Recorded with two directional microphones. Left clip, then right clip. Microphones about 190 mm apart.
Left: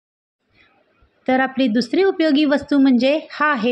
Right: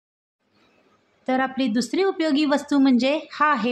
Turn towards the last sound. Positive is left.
turn(degrees=15)  # may be behind; listen again after turning